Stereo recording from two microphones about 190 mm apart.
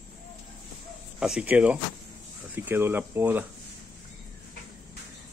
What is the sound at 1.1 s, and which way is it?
Speech, 5° right (ahead or behind).